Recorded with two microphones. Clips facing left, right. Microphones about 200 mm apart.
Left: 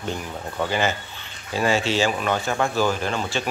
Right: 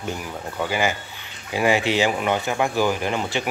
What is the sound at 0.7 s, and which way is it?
Speech, 10° right (ahead or behind).